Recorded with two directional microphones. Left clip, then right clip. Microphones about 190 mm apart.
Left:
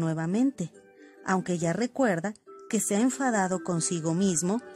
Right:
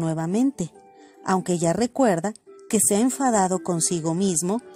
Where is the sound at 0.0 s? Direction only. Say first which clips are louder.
Right 4 dB; 10° right (ahead or behind).